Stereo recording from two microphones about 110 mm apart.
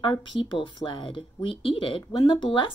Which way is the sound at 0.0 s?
50° left (ahead or behind).